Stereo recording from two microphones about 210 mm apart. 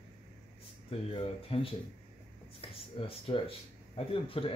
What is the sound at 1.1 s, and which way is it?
Speech, 25° left (ahead or behind).